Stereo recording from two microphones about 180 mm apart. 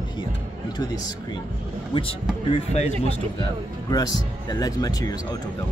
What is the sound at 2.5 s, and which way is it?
Speech, 35° left (ahead or behind).